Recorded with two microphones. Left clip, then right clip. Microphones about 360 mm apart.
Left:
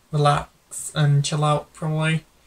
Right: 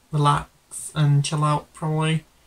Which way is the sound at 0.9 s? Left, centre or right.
Centre.